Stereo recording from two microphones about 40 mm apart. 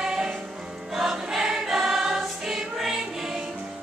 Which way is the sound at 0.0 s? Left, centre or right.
Centre.